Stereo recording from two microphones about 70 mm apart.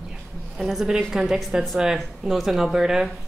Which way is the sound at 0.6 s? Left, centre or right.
Centre.